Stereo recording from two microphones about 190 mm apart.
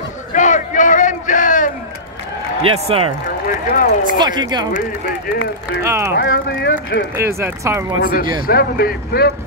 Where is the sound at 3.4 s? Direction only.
45° left (ahead or behind).